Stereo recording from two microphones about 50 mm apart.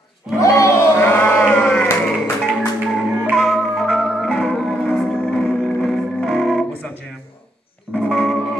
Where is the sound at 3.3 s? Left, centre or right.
Centre.